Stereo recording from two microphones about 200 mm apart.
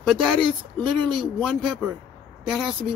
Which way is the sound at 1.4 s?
Centre (ahead or behind).